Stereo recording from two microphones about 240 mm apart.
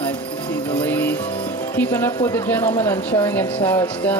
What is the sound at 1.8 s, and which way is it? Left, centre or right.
Speech, centre.